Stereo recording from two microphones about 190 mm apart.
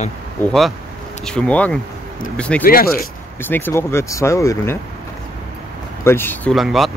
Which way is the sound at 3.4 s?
10° left (ahead or behind).